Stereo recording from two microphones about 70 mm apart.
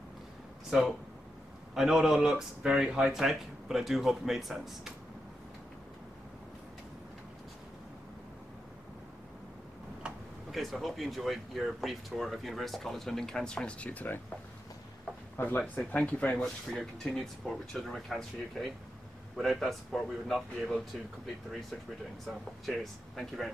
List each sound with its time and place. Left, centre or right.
0.7 s speech: centre
10.0 s tick-tock: centre
10.5 s speech: centre; by 14.2 s left
15.3 s speech: left
15.8 s speech: centre
16.7 s speech: centre
22.2 s speech: centre